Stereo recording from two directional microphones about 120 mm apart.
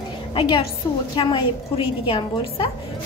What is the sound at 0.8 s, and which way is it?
Speech, 30° left (ahead or behind).